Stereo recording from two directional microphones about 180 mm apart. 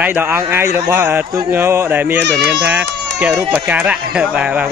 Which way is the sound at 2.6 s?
10° right (ahead or behind).